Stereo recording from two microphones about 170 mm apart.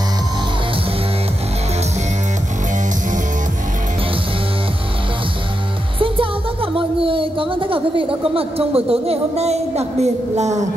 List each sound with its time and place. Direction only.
5.9 s speech: 30° right (ahead or behind)